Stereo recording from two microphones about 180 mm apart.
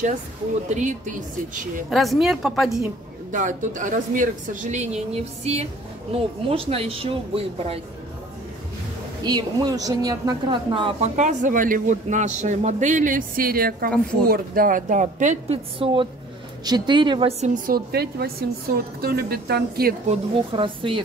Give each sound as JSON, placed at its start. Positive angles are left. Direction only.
{"t": 0.7, "sound": "a man's voice", "side_deg": -40}
{"t": 1.9, "sound": "a woman's voice", "side_deg": 0}
{"t": 3.3, "sound": "a man's voice", "side_deg": -45}
{"t": 9.2, "sound": "a woman's voice", "side_deg": -20}
{"t": 11.1, "sound": "a man's voice", "side_deg": -45}
{"t": 17.6, "sound": "a woman's voice", "side_deg": -55}
{"t": 20.1, "sound": "a woman's voice", "side_deg": -30}